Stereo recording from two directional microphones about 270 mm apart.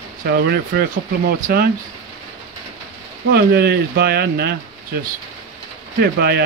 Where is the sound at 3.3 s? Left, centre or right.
Right.